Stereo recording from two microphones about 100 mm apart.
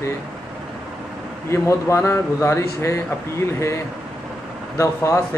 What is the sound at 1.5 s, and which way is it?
A man's voice, 30° left (ahead or behind).